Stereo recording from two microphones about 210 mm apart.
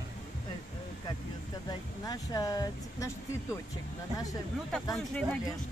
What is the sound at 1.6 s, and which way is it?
Speech, 15° left (ahead or behind).